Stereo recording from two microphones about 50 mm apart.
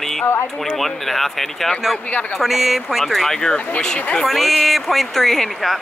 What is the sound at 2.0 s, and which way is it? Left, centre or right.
Speech, left.